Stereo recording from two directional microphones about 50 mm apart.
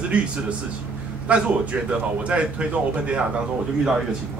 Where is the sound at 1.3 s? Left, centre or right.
Right.